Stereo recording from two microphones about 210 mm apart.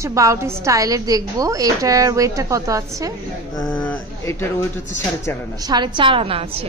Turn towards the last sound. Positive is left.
turn(degrees=-25)  # may be behind; listen again after turning